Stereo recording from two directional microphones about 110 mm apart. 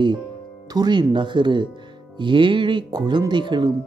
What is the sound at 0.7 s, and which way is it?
Speech, 40° right (ahead or behind).